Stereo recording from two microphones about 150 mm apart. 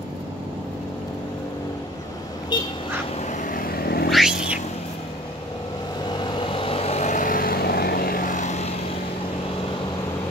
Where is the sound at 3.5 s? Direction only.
85° left.